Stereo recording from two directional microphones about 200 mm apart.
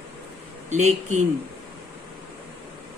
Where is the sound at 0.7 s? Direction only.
35° right (ahead or behind).